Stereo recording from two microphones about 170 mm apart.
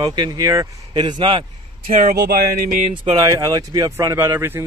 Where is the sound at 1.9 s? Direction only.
60° right (ahead or behind).